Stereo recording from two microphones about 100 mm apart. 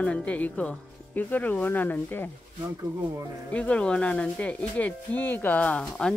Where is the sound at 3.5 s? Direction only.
10° left (ahead or behind).